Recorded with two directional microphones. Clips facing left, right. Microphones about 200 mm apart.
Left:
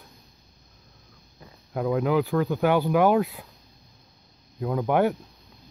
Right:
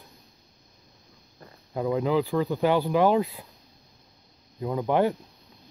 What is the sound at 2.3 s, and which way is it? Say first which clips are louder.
Speech: left 1 dB; 5° right (ahead or behind).